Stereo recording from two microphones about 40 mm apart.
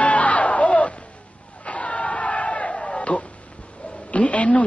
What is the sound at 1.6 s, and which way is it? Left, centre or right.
Battle cry, left.